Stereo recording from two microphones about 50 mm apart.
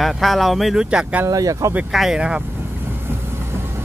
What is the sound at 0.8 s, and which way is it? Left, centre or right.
Speech, centre.